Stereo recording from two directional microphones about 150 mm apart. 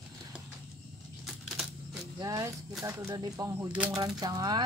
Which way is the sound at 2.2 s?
25° right (ahead or behind).